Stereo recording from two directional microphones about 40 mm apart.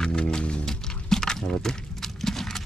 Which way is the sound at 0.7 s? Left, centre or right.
Centre.